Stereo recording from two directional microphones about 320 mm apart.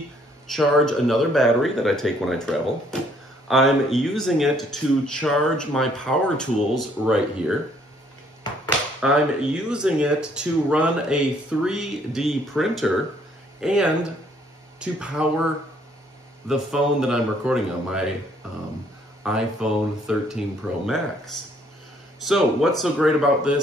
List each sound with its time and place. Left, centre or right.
0.5 s speech: centre
9.0 s speech: centre
16.4 s speech: centre
19.2 s speech: centre